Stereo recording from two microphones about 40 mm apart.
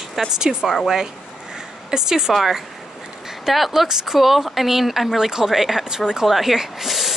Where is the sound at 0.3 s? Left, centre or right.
Centre.